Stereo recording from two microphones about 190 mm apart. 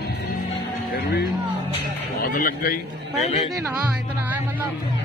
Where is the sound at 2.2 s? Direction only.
45° left (ahead or behind).